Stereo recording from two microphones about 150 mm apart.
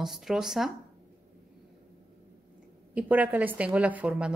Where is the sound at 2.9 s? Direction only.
10° right (ahead or behind).